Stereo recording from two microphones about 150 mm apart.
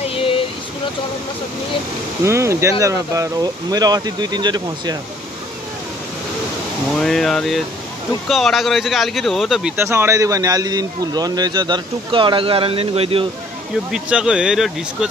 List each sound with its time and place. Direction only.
0.1 s a sound: 35° left (ahead or behind)
2.2 s speech: 20° right (ahead or behind)
7.0 s speech: 5° left (ahead or behind)
9.8 s speech: 15° right (ahead or behind); by 13.3 s 40° right (ahead or behind)
13.9 s speech: 5° right (ahead or behind)